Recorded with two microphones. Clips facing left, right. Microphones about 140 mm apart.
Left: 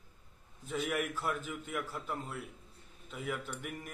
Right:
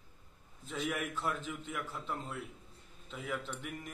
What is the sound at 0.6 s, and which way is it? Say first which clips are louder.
A man's voice: left 2 dB; 5° left (ahead or behind).